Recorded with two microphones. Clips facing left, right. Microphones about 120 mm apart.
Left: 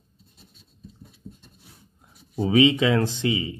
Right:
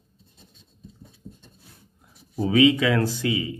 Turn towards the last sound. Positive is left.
turn(degrees=25)  # may be behind; listen again after turning